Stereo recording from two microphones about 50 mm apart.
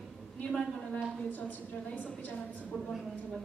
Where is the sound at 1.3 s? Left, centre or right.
Left.